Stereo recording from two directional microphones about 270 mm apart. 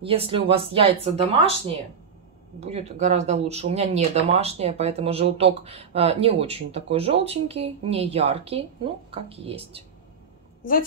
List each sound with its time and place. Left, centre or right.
0.0 s speech: right
2.6 s speech: right